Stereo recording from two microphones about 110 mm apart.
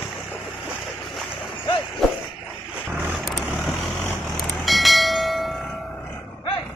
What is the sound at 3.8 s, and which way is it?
Vehicle, 20° left (ahead or behind).